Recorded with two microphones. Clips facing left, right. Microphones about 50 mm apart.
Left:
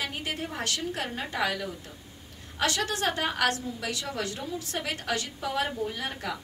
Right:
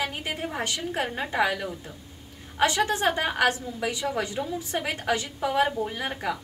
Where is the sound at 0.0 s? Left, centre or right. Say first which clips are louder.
Right 3 dB; centre.